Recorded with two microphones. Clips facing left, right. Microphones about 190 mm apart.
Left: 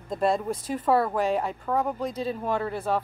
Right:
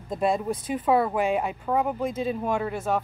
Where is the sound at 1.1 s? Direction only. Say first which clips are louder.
Right 1 dB; 15° right (ahead or behind).